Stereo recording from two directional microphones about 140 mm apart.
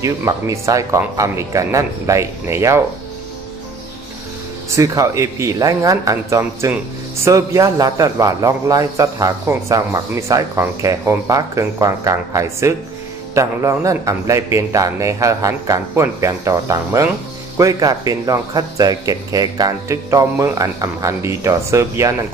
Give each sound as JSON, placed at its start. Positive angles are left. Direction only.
{"t": 0.0, "sound": "a man's voice", "side_deg": -20}
{"t": 4.7, "sound": "a man's voice", "side_deg": -25}